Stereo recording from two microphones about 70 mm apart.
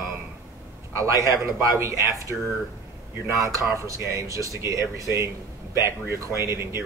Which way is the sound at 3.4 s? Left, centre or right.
Right.